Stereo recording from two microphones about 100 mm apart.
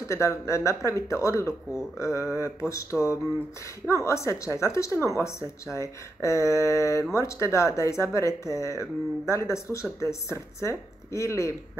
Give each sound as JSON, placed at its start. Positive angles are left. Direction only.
{"t": 0.0, "sound": "speech", "side_deg": 30}